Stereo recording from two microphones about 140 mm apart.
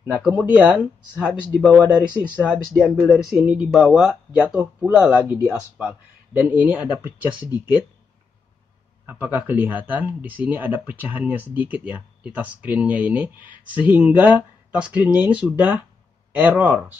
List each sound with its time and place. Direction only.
0.4 s speech: 5° right (ahead or behind)
2.8 s speech: 5° right (ahead or behind)
9.0 s speech: 10° right (ahead or behind)